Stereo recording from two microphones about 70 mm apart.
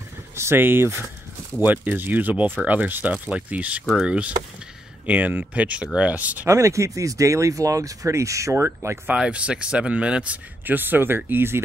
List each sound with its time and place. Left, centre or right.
0.4 s speech: right
6.4 s speech: right
8.6 s speech: right
9.1 s speech: centre; by 11.6 s right